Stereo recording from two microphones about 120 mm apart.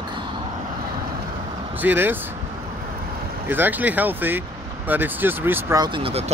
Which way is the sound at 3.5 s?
15° right (ahead or behind).